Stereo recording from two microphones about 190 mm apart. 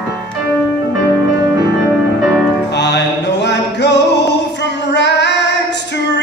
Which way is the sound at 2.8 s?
65° left (ahead or behind).